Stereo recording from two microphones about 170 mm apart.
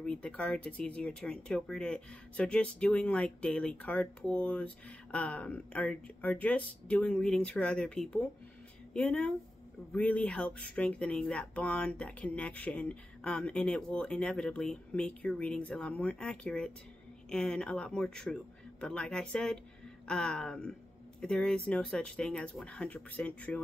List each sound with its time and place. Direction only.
0.0 s speech: 5° left (ahead or behind)